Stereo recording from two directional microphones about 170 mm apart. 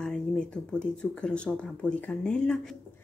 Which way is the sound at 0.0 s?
5° left (ahead or behind).